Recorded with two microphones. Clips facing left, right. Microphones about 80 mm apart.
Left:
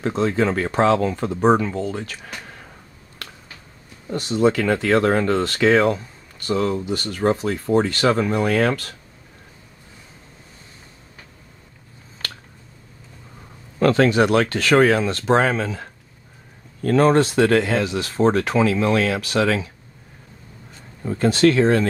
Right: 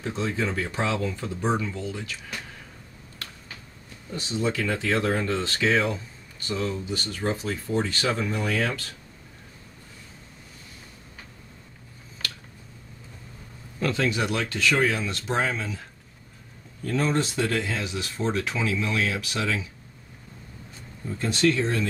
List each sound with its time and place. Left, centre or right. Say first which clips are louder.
0.0 s speech: left 8 dB; left
4.1 s speech: left 9 dB; left
13.7 s speech: left 10 dB; left
21.0 s speech: left 8 dB; left